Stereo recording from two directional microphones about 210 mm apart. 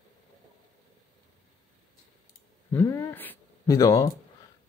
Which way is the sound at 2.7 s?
15° left (ahead or behind).